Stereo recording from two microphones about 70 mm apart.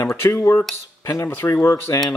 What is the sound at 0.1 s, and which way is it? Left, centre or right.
Speech, left.